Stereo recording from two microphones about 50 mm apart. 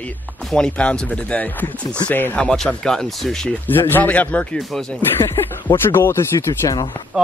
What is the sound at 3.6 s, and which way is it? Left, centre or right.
Speech, left.